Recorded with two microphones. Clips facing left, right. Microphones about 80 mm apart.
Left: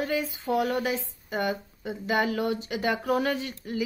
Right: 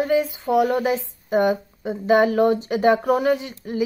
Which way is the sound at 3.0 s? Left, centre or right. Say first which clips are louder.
Right 7 dB; centre.